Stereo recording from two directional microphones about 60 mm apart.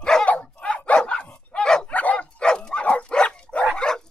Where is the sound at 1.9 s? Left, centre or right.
Left.